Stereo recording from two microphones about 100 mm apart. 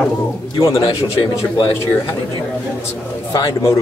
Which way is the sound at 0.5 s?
60° left (ahead or behind).